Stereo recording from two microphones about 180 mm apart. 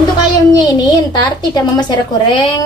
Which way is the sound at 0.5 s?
25° left (ahead or behind).